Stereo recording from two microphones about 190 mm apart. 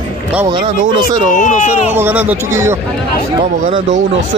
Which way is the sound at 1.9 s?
10° right (ahead or behind).